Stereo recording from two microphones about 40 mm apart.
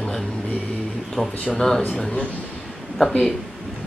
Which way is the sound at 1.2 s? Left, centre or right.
Left.